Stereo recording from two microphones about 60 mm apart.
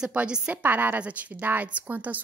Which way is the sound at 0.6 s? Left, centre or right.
Right.